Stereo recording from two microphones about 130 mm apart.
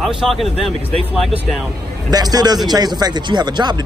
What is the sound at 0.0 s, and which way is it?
Speech, centre (ahead or behind).